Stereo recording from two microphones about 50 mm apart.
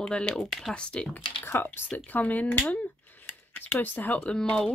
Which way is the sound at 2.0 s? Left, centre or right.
Left.